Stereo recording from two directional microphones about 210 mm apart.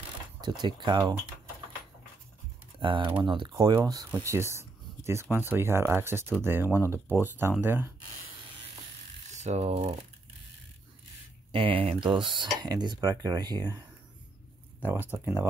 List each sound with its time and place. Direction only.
0.4 s speech: 20° right (ahead or behind)
2.8 s speech: 25° right (ahead or behind)
9.3 s speech: 35° right (ahead or behind)
11.5 s speech: 25° right (ahead or behind)
14.9 s speech: 10° right (ahead or behind)